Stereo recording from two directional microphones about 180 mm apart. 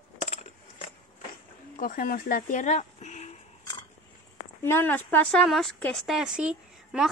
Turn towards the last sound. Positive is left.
turn(degrees=-5)  # may be behind; listen again after turning